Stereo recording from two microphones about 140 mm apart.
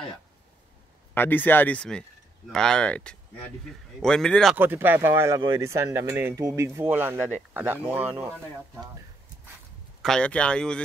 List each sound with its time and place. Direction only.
1.1 s speech: 15° left (ahead or behind)
4.6 s speech: 15° right (ahead or behind)
10.0 s speech: 5° left (ahead or behind)